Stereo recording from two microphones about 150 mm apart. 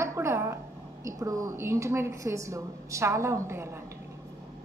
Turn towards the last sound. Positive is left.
turn(degrees=-15)  # may be behind; listen again after turning